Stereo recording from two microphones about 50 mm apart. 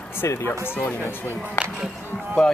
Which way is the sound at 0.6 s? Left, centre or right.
Left.